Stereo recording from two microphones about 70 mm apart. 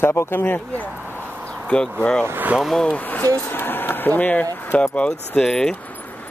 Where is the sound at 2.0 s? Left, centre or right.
Centre.